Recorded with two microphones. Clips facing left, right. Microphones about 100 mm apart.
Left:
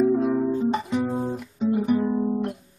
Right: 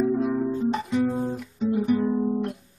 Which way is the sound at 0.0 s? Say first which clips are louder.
Left 3 dB; 10° left (ahead or behind).